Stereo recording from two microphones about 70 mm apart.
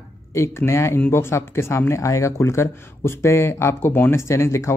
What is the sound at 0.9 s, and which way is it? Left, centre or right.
Speech, left.